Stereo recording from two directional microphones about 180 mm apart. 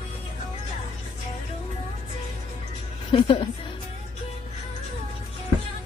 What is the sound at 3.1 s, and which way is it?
Speech, 25° left (ahead or behind).